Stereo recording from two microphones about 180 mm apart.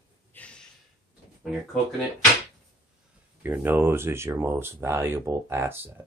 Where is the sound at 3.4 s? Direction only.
10° right (ahead or behind).